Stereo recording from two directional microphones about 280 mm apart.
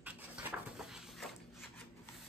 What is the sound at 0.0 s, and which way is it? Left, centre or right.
Rub, centre.